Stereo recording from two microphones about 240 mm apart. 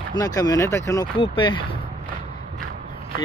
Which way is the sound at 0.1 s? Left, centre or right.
Centre.